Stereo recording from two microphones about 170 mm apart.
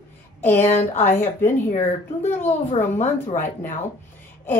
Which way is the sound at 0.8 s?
40° left (ahead or behind).